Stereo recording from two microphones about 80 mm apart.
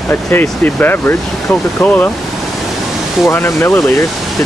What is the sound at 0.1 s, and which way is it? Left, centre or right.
Speech, left.